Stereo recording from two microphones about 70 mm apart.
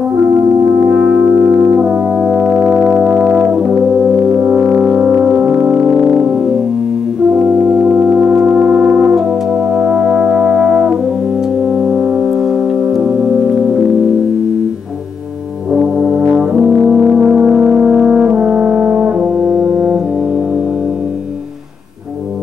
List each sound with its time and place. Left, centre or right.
0.8 s brass instrument: centre
4.6 s music: centre
7.7 s organ: centre
11.7 s music: centre
15.7 s brass instrument: centre